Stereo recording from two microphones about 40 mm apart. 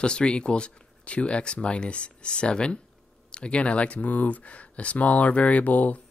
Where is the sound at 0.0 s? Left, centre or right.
Left.